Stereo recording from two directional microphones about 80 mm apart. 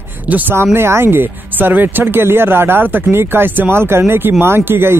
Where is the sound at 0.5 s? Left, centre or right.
Right.